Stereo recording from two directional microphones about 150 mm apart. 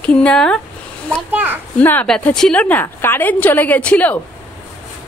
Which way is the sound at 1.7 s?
10° left (ahead or behind).